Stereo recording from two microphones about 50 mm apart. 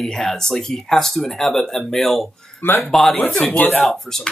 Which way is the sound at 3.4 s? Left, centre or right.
Left.